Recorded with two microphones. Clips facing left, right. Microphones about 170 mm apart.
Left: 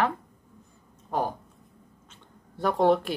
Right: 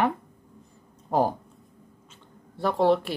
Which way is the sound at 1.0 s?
30° right (ahead or behind).